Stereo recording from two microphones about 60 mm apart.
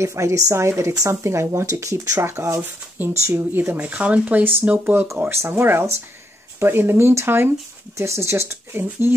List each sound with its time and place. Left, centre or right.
0.0 s a woman's voice: right
1.7 s a woman's voice: right
2.2 s speech: right
2.6 s speech: right
3.8 s speech: right
5.2 s speech: right